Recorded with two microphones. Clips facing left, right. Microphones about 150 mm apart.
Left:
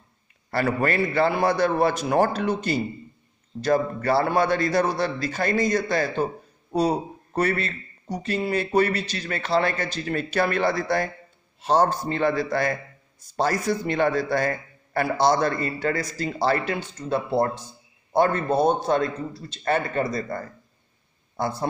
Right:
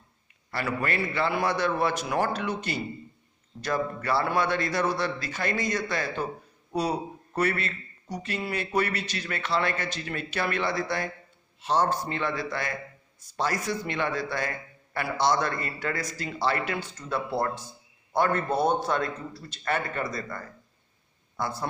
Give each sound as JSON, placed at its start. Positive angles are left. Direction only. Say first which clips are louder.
{"t": 0.5, "sound": "a man's voice", "louder": "left 6 dB", "side_deg": 40}